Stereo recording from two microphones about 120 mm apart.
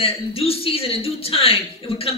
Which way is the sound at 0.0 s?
55° left (ahead or behind).